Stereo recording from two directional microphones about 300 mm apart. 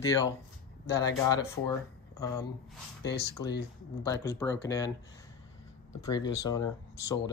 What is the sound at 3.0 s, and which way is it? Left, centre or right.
Speech, left.